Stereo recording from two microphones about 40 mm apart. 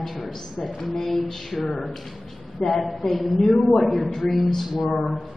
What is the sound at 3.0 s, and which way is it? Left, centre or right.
A woman's voice, centre.